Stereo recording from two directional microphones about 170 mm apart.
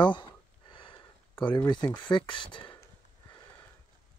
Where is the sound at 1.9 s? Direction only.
25° left (ahead or behind).